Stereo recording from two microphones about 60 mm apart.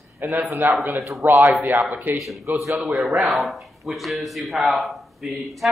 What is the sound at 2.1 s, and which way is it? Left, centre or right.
Speech, centre.